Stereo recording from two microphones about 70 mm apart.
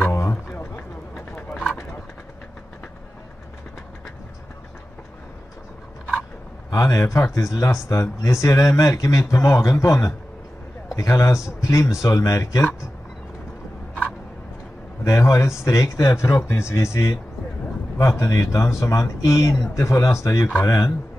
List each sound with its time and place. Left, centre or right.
0.1 s a sound: left
1.1 s bird: centre
6.7 s speech: left
15.0 s speech: left
20.6 s speech: left